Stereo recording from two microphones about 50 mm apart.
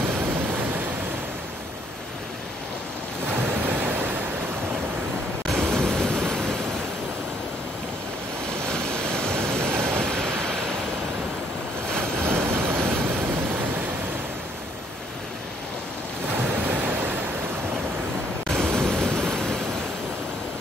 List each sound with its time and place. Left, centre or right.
0.1 s waves: right
0.5 s a sound: right
3.3 s waves: right
5.7 s waves: centre
8.5 s waves: centre
12.2 s vehicle: right
12.6 s waves: right
16.3 s thunder: right
18.5 s waves: centre